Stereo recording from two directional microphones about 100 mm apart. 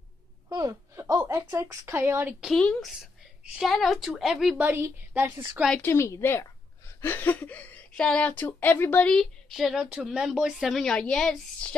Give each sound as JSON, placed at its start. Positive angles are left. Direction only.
{"t": 0.5, "sound": "speech", "side_deg": -40}
{"t": 2.5, "sound": "a woman's voice", "side_deg": 10}
{"t": 4.6, "sound": "a woman's voice", "side_deg": -15}
{"t": 5.9, "sound": "a woman's voice", "side_deg": 30}